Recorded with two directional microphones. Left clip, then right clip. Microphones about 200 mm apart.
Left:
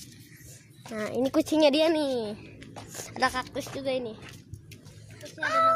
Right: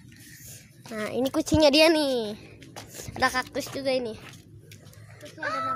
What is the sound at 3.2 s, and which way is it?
Speech, 15° right (ahead or behind).